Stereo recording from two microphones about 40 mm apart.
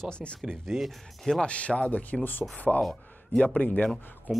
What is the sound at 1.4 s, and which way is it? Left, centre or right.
Speech, left.